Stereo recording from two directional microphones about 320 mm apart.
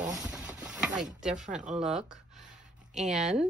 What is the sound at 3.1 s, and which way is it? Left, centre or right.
Speech, centre.